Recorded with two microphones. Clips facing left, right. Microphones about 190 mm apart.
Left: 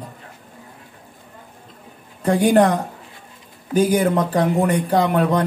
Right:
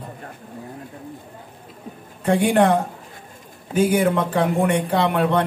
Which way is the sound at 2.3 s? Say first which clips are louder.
Left 2 dB; 40° left (ahead or behind).